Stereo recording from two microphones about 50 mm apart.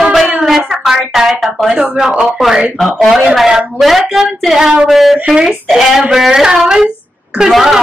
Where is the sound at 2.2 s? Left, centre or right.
Centre.